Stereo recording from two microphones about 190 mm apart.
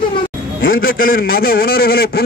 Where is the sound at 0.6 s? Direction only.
50° left (ahead or behind).